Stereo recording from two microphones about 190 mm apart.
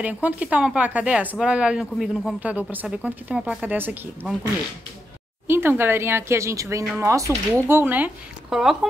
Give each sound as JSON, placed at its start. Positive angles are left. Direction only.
{"t": 0.0, "sound": "a woman's voice", "side_deg": -10}
{"t": 5.5, "sound": "a woman's voice", "side_deg": -10}